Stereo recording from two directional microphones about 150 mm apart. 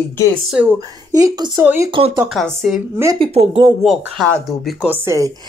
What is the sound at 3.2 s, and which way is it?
Speech, 40° right (ahead or behind).